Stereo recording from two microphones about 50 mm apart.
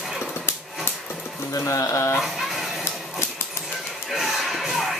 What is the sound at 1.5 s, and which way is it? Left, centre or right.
Speech, left.